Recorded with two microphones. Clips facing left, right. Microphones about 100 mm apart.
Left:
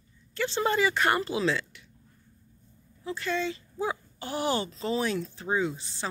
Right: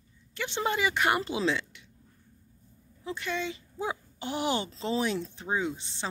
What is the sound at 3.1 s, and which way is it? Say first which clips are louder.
Speech: left 3 dB; 15° right (ahead or behind).